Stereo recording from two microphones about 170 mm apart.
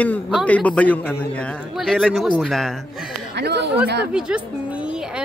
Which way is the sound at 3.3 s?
85° right.